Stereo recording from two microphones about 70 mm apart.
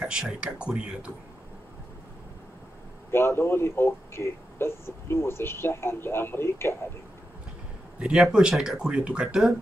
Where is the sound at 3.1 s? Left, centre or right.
Left.